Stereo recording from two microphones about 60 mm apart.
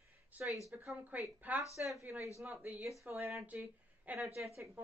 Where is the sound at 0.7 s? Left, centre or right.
Right.